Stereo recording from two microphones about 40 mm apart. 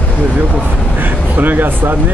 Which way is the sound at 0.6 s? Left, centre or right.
Right.